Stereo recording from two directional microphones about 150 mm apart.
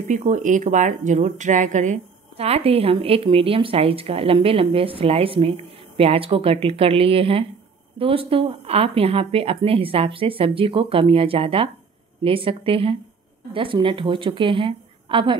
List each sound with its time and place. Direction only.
0.1 s speech: 50° right (ahead or behind); by 15.3 s 35° right (ahead or behind)